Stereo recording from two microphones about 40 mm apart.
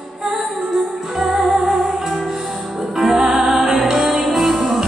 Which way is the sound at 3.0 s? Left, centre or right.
Centre.